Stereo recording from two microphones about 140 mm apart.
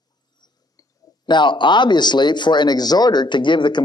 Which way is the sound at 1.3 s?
35° left (ahead or behind).